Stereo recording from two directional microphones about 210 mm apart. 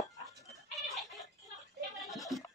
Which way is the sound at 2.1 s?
Centre (ahead or behind).